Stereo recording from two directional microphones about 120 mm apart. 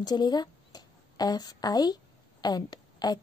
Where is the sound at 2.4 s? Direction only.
35° left (ahead or behind).